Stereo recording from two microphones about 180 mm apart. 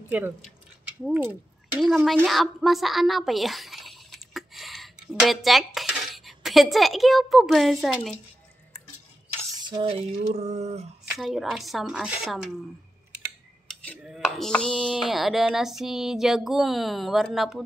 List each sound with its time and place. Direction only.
0.1 s speech: 10° right (ahead or behind)
9.6 s a sound: 25° right (ahead or behind)
11.1 s speech: centre (ahead or behind)
13.7 s speech: centre (ahead or behind)